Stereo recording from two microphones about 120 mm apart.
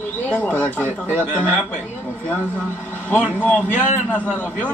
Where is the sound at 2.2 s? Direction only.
15° left (ahead or behind).